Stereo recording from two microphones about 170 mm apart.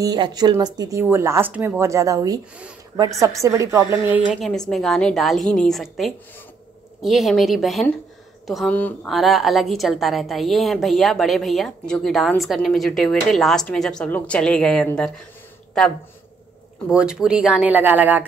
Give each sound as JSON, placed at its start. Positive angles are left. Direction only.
{"t": 0.0, "sound": "speech", "side_deg": -25}
{"t": 4.1, "sound": "a woman's voice", "side_deg": 0}
{"t": 16.9, "sound": "a woman's voice", "side_deg": -5}